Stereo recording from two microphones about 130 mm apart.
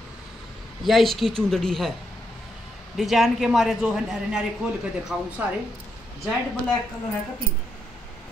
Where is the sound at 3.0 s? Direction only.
Centre (ahead or behind).